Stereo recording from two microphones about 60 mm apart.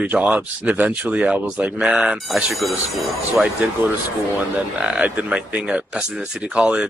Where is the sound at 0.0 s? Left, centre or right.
Right.